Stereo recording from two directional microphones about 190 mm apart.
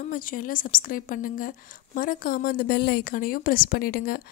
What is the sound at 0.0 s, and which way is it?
A woman's voice, 45° left (ahead or behind).